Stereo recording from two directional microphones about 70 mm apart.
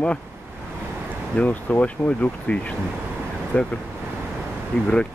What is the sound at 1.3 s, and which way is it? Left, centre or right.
Speech, left.